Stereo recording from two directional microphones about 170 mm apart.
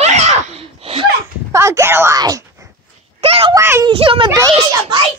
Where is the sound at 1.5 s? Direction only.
15° right (ahead or behind).